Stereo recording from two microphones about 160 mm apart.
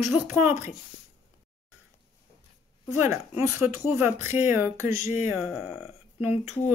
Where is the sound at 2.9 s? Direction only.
15° right (ahead or behind).